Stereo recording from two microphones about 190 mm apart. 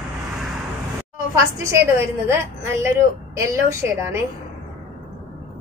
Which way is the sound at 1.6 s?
15° right (ahead or behind).